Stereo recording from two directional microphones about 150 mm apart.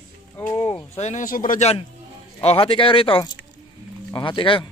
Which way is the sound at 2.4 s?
40° left (ahead or behind).